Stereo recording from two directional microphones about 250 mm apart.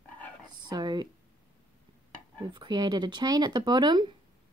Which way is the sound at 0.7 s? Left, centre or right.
Centre.